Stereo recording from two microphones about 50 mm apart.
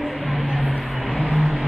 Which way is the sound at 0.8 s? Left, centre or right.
Centre.